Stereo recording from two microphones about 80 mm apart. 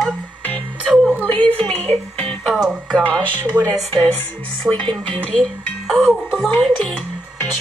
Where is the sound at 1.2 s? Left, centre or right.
Centre.